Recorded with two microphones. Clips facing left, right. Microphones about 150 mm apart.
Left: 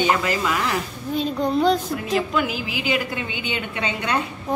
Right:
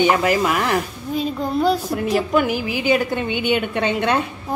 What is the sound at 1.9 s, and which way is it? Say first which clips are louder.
A woman's voice: right 4 dB; 50° right (ahead or behind).